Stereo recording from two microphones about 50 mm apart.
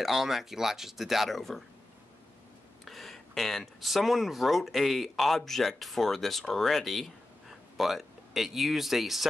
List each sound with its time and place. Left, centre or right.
0.0 s speech: centre
2.8 s speech: centre